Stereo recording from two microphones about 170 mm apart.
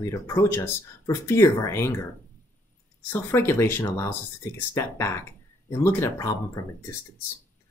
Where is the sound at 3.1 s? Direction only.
15° left (ahead or behind).